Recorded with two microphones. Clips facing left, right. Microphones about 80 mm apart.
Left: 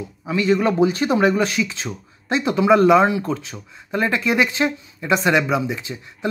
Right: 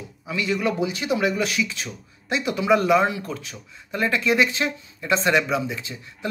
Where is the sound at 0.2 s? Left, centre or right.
Left.